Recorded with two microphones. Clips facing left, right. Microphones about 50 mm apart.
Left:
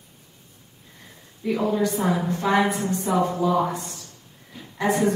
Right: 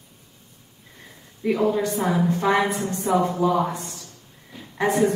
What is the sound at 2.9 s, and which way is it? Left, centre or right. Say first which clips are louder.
Speech: even; right.